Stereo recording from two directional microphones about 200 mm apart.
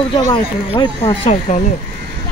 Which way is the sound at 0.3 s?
20° left (ahead or behind).